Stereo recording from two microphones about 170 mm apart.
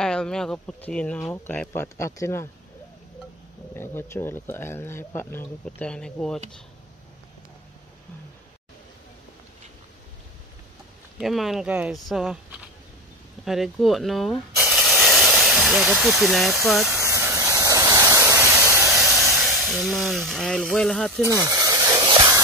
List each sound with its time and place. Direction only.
0.0 s speech: 5° left (ahead or behind)
3.7 s speech: 15° left (ahead or behind)
11.1 s speech: centre (ahead or behind)
13.5 s speech: centre (ahead or behind)
14.6 s hiss: centre (ahead or behind)
16.6 s speech: centre (ahead or behind)
16.9 s a sound: 15° right (ahead or behind)
18.9 s speech: centre (ahead or behind)
21.4 s a sound: 20° right (ahead or behind)